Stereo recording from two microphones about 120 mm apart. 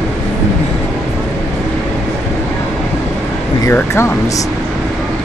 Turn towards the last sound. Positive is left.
turn(degrees=20)  # may be behind; listen again after turning